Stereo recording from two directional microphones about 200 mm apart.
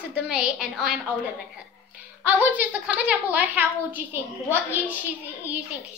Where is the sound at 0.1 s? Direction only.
5° right (ahead or behind).